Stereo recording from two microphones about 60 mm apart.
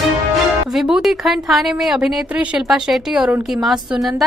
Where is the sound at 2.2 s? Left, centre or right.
Centre.